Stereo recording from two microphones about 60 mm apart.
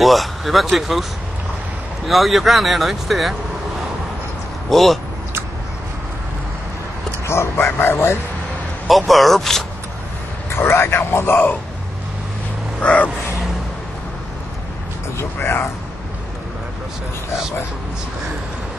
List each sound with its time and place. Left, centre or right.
0.0 s speech: centre
2.0 s speech: centre
4.6 s speech: centre
7.2 s speech: left
8.8 s speech: centre
10.5 s speech: left
12.8 s vehicle: left
15.1 s speech: left